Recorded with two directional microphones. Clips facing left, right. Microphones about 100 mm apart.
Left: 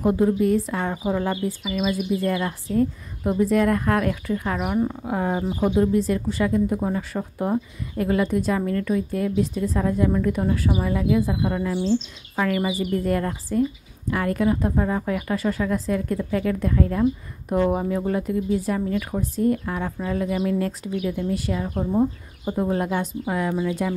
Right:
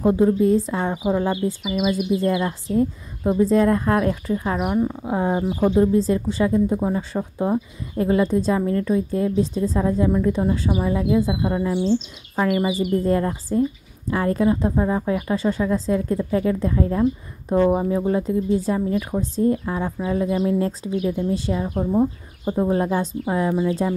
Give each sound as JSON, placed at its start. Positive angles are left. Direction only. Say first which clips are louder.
{"t": 0.0, "sound": "speech", "louder": "right 3 dB", "side_deg": -25}
{"t": 1.0, "sound": "speech", "louder": "right 4 dB", "side_deg": -15}
{"t": 4.6, "sound": "speech", "louder": "right 2 dB", "side_deg": 0}
{"t": 5.0, "sound": "speech", "louder": "right 3 dB", "side_deg": -20}
{"t": 21.6, "sound": "speech", "louder": "right 2 dB", "side_deg": -15}
{"t": 22.4, "sound": "speech", "louder": "right 3 dB", "side_deg": -25}